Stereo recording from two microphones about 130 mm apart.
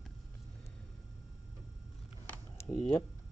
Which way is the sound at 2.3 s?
20° left (ahead or behind).